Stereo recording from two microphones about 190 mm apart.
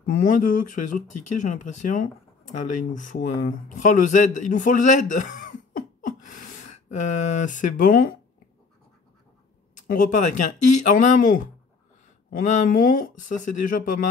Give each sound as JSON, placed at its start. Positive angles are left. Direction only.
{"t": 0.0, "sound": "speech", "side_deg": 45}
{"t": 9.8, "sound": "speech", "side_deg": 45}